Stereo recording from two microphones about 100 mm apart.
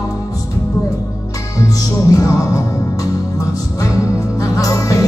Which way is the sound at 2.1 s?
35° left (ahead or behind).